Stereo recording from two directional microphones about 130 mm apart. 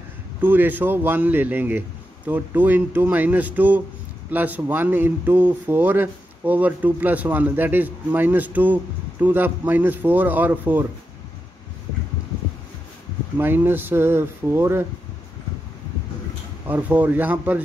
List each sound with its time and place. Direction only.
0.4 s speech: 15° right (ahead or behind)
13.4 s speech: 15° right (ahead or behind)
16.6 s speech: 15° right (ahead or behind)